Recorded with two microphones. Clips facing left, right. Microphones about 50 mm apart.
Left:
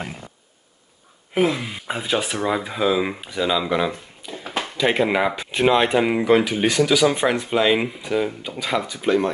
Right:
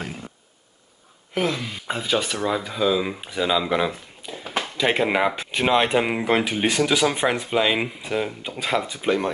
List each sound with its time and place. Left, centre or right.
1.3 s speech: centre
3.2 s speech: centre
6.2 s speech: right
7.1 s speech: centre